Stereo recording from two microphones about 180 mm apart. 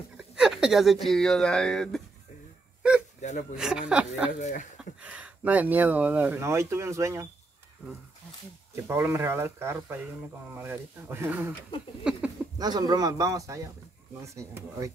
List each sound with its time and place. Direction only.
0.4 s a sound: 5° right (ahead or behind)
1.0 s speech: 5° left (ahead or behind)
3.2 s whimper: 40° left (ahead or behind)
3.5 s speech: 5° right (ahead or behind)
4.4 s speech: 40° left (ahead or behind)
4.7 s speech: 5° right (ahead or behind)
8.8 s speech: 15° right (ahead or behind)
12.5 s a man's voice: 20° right (ahead or behind)